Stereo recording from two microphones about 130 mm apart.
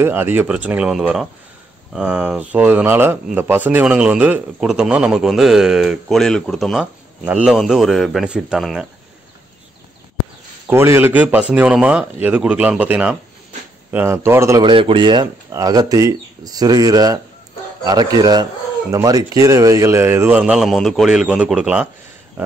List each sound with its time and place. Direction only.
0.0 s a man's voice: 15° right (ahead or behind)
10.7 s speech: 20° right (ahead or behind)
14.6 s speech: 40° right (ahead or behind); by 21.8 s 5° right (ahead or behind)